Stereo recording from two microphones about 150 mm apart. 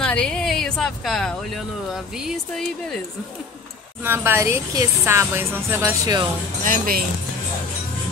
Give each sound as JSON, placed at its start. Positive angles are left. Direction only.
{"t": 0.0, "sound": "speech", "side_deg": 5}
{"t": 4.0, "sound": "speech", "side_deg": -15}
{"t": 6.6, "sound": "speech", "side_deg": -70}